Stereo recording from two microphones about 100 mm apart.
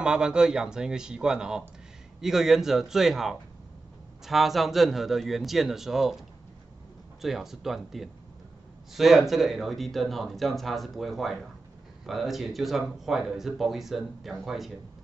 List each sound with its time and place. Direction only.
0.0 s speech: 10° right (ahead or behind)